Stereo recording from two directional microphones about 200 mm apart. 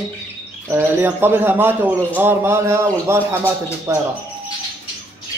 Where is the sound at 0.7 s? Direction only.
10° right (ahead or behind).